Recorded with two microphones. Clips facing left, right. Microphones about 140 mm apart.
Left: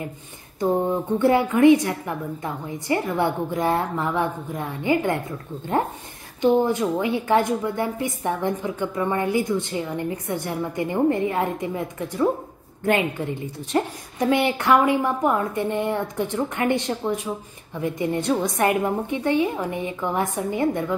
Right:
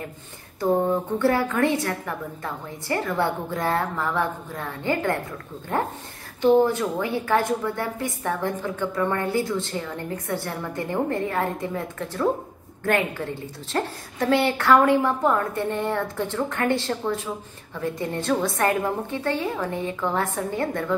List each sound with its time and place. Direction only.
0.6 s a woman's voice: 20° left (ahead or behind)
6.4 s a woman's voice: 20° left (ahead or behind)